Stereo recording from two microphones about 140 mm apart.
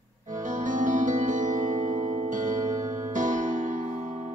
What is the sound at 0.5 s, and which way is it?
Music, 65° right (ahead or behind).